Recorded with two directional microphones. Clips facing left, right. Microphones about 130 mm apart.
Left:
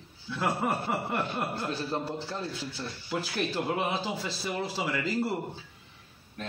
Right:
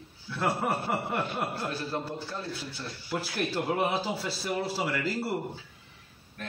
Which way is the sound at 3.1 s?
5° right (ahead or behind).